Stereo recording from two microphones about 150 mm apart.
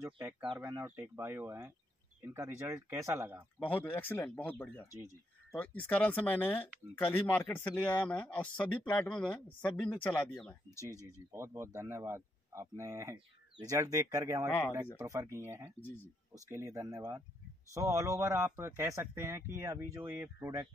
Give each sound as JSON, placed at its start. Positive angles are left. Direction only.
{"t": 0.6, "sound": "speech", "side_deg": -20}
{"t": 3.5, "sound": "speech", "side_deg": 10}
{"t": 10.9, "sound": "speech", "side_deg": -20}
{"t": 15.8, "sound": "speech", "side_deg": 10}
{"t": 16.4, "sound": "speech", "side_deg": -20}